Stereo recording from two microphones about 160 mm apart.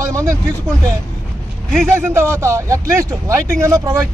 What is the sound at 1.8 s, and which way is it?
Speech, 15° right (ahead or behind).